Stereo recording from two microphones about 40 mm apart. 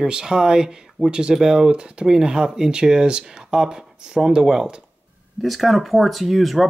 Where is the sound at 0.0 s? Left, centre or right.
Centre.